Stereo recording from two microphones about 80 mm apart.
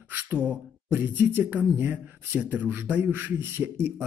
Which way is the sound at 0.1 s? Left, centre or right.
Right.